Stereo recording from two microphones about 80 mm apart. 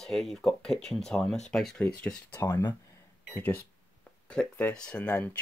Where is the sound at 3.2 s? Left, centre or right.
Left.